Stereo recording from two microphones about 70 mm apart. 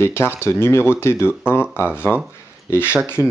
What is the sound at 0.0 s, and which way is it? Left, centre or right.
Speech, left.